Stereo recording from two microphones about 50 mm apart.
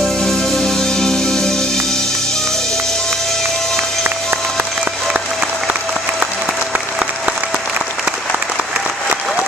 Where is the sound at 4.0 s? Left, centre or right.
Right.